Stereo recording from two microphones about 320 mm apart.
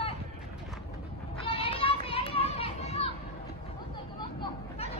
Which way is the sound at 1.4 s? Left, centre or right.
Centre.